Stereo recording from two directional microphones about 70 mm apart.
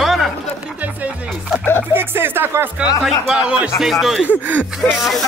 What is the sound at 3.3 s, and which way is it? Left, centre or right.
Speech, centre.